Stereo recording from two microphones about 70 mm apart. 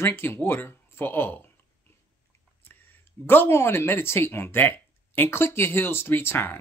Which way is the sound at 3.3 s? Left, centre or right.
Left.